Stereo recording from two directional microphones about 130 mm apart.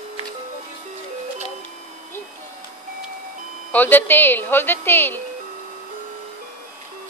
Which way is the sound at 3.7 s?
15° left (ahead or behind).